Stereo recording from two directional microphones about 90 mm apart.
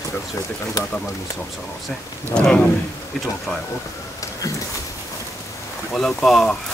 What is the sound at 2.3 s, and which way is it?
Speech, 10° left (ahead or behind).